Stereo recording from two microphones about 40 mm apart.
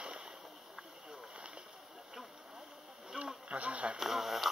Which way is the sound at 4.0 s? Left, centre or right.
Centre.